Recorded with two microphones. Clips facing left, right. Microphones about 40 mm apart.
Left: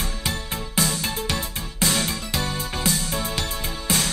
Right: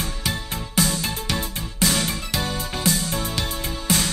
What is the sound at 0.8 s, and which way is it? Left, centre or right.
Music, centre.